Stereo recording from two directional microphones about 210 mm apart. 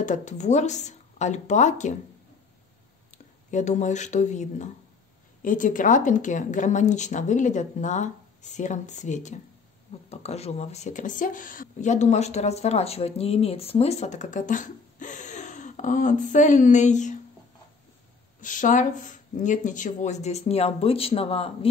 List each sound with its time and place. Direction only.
0.0 s speech: 35° left (ahead or behind)
3.1 s speech: 35° left (ahead or behind)
18.4 s speech: 35° left (ahead or behind)